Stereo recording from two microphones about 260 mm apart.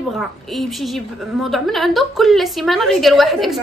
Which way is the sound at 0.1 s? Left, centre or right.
Centre.